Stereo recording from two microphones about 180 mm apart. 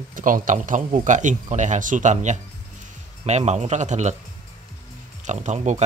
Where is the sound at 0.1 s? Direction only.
45° right (ahead or behind).